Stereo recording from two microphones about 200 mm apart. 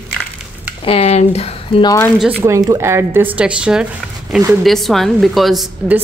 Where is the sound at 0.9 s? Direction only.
30° left (ahead or behind).